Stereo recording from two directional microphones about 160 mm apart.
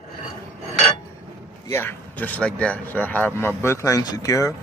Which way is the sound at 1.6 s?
15° left (ahead or behind).